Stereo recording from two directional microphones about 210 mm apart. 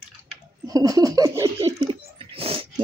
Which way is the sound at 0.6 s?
15° right (ahead or behind).